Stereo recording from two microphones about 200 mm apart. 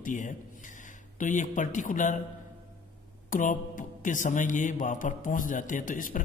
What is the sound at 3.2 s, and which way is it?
Speech, 40° left (ahead or behind).